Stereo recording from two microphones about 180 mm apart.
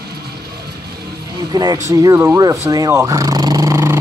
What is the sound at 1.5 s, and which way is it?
Speech, 20° right (ahead or behind).